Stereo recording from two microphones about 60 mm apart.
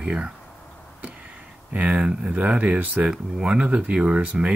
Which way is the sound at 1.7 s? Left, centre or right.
Right.